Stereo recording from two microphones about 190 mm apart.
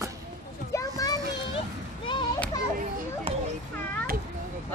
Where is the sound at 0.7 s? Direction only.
15° left (ahead or behind).